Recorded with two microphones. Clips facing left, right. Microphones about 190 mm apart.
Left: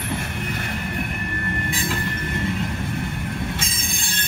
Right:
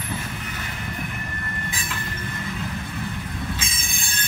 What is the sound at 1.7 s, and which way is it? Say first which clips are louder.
Train: left 7 dB; 30° left (ahead or behind).